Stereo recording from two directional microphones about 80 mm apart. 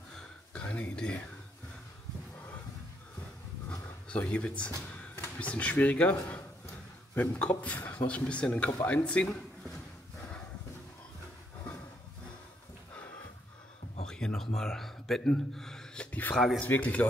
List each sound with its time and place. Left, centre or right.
0.1 s a sound: centre
4.2 s speech: centre
7.2 s speech: centre
14.0 s speech: centre
16.3 s speech: centre
16.6 s speech: centre